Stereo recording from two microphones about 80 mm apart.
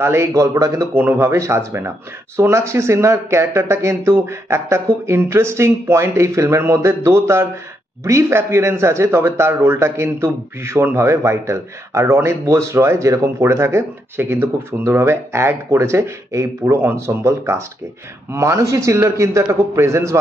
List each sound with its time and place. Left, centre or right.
0.0 s a man's voice: right
0.9 s a man's voice: right
1.4 s a man's voice: right